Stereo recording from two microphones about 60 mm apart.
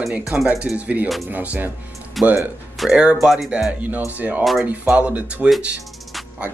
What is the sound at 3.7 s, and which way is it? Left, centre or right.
Speech, right.